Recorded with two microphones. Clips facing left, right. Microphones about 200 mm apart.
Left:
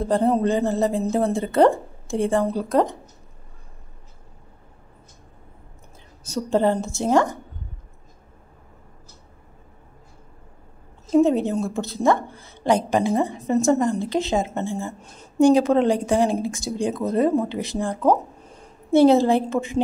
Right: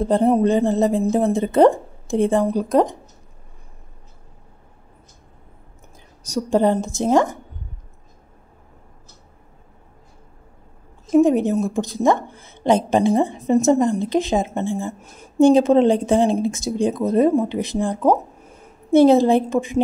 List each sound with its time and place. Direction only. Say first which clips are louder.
0.0 s a woman's voice: right 3 dB; 20° right (ahead or behind)
6.2 s a woman's voice: right 2 dB; 10° right (ahead or behind)
11.1 s a woman's voice: right 3 dB; 15° right (ahead or behind)
15.3 s speech: right 3 dB; 25° right (ahead or behind); by 18.9 s 5° right (ahead or behind)
18.9 s a woman's voice: right 2 dB; 20° right (ahead or behind)